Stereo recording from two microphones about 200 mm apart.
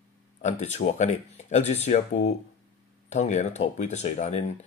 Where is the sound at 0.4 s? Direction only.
35° left (ahead or behind).